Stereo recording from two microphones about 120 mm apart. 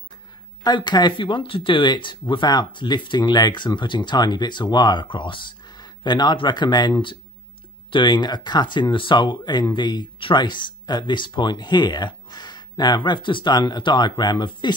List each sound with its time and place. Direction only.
0.7 s speech: 40° left (ahead or behind)